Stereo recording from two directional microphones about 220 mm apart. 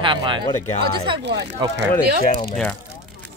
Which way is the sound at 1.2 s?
50° right (ahead or behind).